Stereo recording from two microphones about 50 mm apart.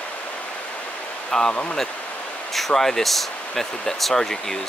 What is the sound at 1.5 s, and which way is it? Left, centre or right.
Speech, left.